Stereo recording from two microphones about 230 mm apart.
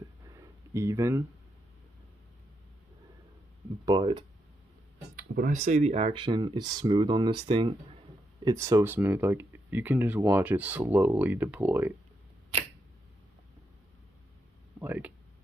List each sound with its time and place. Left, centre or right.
0.3 s a sound: centre
3.8 s speech: centre
5.1 s speech: right; by 11.9 s centre
14.8 s speech: centre